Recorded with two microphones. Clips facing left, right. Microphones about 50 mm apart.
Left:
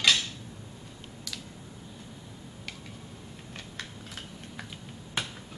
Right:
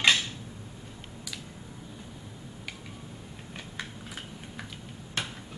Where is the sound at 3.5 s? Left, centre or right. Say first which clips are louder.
Right 2 dB; centre.